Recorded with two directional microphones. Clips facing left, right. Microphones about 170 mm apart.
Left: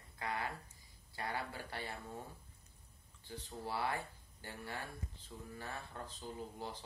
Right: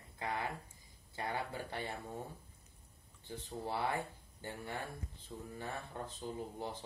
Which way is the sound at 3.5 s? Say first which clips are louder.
Right 2 dB; 20° right (ahead or behind).